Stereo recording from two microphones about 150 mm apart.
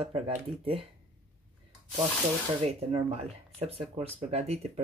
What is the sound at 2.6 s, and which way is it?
Speech, 45° right (ahead or behind).